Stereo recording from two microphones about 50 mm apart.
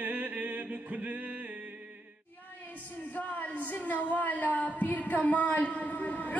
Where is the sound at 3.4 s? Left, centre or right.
Left.